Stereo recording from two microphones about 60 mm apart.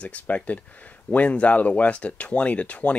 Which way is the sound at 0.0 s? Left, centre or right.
Left.